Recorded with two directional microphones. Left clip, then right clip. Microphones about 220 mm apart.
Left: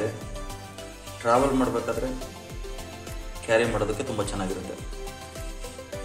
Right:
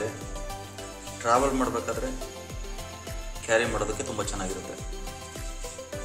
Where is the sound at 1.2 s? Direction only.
10° right (ahead or behind).